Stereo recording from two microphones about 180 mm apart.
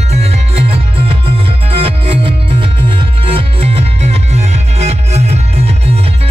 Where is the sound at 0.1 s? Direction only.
35° right (ahead or behind).